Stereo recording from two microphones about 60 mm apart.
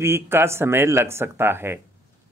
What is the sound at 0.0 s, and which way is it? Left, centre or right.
Speech, right.